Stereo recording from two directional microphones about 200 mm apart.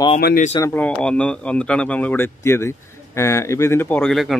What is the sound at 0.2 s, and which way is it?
Speech, 45° left (ahead or behind).